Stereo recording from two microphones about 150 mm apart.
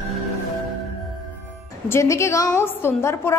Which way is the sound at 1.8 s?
20° left (ahead or behind).